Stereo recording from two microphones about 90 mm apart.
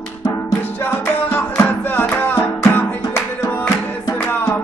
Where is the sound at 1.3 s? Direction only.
20° left (ahead or behind).